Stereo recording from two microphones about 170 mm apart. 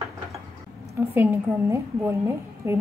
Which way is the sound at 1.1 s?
15° right (ahead or behind).